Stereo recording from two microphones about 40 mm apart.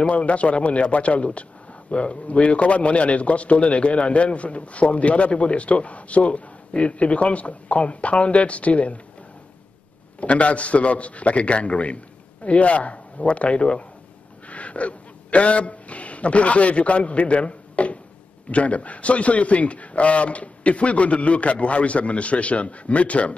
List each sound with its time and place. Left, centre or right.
0.0 s a man's voice: left
10.2 s a man's voice: left